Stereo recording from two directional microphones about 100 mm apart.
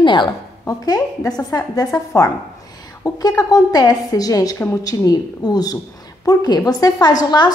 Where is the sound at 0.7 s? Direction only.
40° left (ahead or behind).